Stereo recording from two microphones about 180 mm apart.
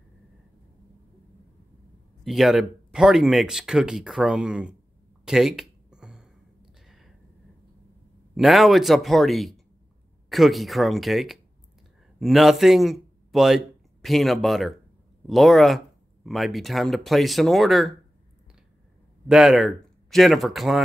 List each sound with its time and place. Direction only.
2.2 s speech: centre (ahead or behind)
5.2 s a sound: 5° right (ahead or behind)
8.4 s a man's voice: centre (ahead or behind)
19.2 s speech: centre (ahead or behind)